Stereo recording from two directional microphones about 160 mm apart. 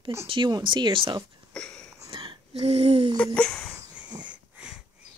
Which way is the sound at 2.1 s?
35° right (ahead or behind).